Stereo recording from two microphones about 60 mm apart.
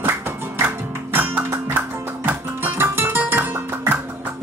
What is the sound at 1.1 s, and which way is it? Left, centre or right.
Music, right.